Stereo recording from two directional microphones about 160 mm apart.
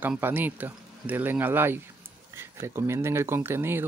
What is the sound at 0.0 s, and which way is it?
Speech, 10° right (ahead or behind).